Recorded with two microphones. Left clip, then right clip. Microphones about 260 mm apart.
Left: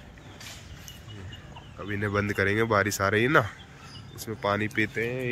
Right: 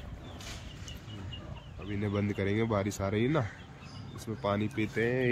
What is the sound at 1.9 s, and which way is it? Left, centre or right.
Speech, centre.